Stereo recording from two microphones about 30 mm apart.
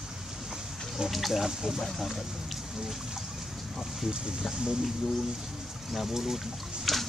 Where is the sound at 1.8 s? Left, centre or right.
Centre.